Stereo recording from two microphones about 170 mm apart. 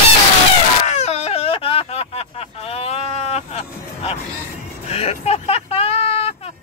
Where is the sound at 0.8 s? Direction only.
40° left (ahead or behind).